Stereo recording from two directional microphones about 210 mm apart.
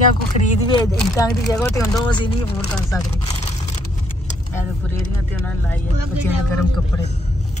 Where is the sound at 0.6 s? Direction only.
20° left (ahead or behind).